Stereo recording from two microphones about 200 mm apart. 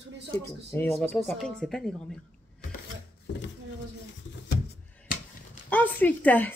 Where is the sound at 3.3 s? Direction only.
60° left (ahead or behind).